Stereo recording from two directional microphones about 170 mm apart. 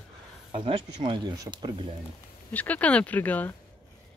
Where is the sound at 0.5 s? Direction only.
35° right (ahead or behind).